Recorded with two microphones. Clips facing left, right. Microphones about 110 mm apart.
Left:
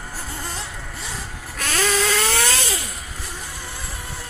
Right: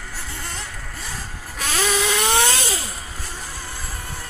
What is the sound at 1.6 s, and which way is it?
Vehicle, 5° right (ahead or behind).